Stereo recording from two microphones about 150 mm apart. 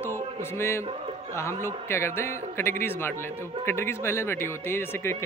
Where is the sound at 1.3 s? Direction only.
20° left (ahead or behind).